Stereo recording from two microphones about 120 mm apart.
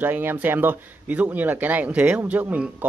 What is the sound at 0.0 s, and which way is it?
Speech, 15° right (ahead or behind).